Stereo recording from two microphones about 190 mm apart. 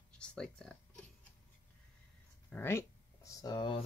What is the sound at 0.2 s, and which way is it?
Speech, 5° left (ahead or behind).